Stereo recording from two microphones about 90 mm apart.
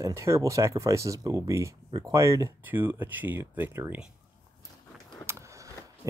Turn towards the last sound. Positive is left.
turn(degrees=-30)  # may be behind; listen again after turning